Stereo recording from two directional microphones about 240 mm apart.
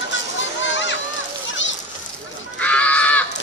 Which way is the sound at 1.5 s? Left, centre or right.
Left.